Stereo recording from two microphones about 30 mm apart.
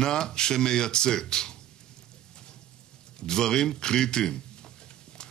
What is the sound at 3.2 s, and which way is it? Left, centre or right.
Speech, left.